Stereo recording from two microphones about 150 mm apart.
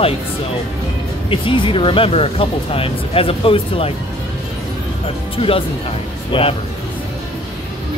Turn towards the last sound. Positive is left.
turn(degrees=35)  # may be behind; listen again after turning